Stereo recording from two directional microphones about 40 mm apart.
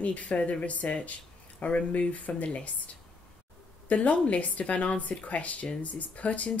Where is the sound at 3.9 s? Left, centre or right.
Left.